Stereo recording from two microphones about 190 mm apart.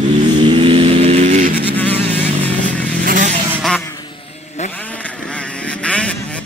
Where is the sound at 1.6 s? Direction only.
10° left (ahead or behind).